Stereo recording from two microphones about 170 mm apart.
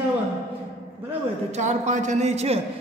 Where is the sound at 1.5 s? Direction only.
45° right (ahead or behind).